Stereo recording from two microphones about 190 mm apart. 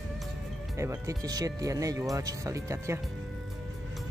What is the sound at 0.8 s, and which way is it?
Speech, 15° right (ahead or behind).